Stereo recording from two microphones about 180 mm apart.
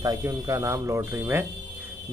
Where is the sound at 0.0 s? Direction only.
20° right (ahead or behind).